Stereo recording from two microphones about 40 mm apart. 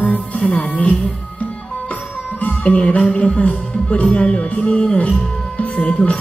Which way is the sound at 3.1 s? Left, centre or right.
Left.